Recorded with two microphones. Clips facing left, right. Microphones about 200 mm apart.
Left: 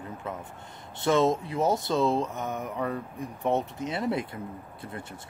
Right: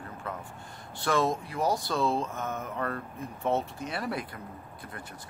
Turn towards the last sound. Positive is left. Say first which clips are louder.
# left 5 dB
turn(degrees=20)  # may be behind; listen again after turning